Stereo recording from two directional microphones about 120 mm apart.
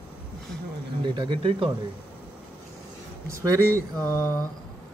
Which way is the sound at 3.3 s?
25° right (ahead or behind).